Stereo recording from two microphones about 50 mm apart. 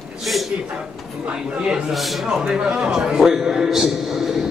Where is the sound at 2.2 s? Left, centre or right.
Centre.